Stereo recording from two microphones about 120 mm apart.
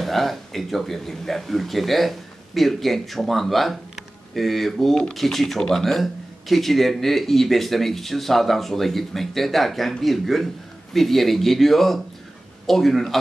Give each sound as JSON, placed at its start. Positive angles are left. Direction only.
{"t": 0.0, "sound": "speech", "side_deg": 0}